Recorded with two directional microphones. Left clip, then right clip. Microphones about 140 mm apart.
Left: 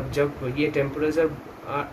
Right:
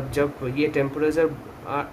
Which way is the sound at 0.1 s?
60° right (ahead or behind).